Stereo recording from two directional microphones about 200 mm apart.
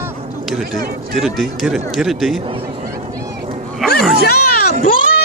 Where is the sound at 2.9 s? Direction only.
15° right (ahead or behind).